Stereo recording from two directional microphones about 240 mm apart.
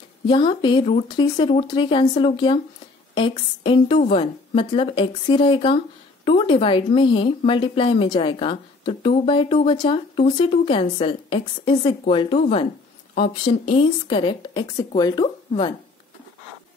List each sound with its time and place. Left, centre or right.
0.3 s a woman's voice: centre